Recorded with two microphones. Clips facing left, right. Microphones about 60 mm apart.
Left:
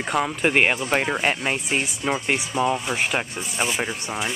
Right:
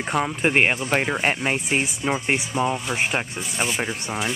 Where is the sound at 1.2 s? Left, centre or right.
Right.